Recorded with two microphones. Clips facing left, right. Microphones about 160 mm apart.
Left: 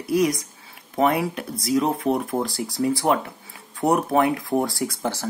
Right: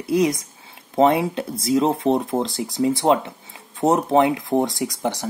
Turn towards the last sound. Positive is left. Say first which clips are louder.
# right 2 dB
turn(degrees=-20)  # may be behind; listen again after turning